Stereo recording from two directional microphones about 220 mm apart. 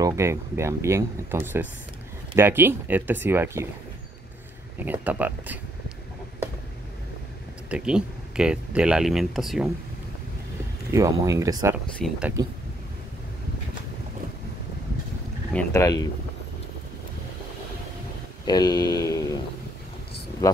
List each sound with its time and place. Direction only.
0.0 s speech: 15° right (ahead or behind)
4.7 s speech: 10° right (ahead or behind)
7.7 s speech: 5° right (ahead or behind)
10.9 s speech: 15° right (ahead or behind)
15.5 s speech: 15° left (ahead or behind)
18.5 s speech: 20° left (ahead or behind)
20.4 s speech: 15° left (ahead or behind)